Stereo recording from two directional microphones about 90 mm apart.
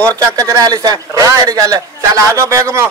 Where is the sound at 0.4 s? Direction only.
40° right (ahead or behind).